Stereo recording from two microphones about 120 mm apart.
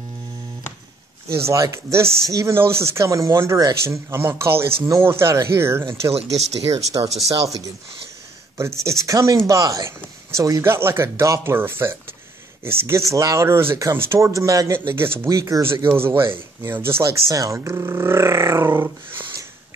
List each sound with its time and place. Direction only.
1.3 s speech: 25° right (ahead or behind)
6.1 s speech: 60° right (ahead or behind)
7.2 s speech: 30° right (ahead or behind)
16.1 s speech: 45° right (ahead or behind)
16.6 s speech: 20° right (ahead or behind)